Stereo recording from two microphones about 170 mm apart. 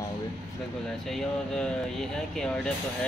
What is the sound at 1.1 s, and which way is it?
Speech, centre (ahead or behind).